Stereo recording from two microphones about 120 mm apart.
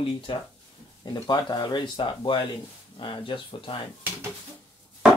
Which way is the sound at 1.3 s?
35° left (ahead or behind).